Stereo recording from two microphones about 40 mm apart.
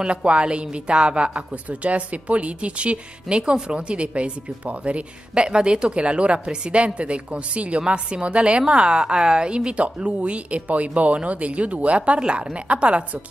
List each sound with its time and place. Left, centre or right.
0.0 s speech: right
12.2 s a woman's voice: right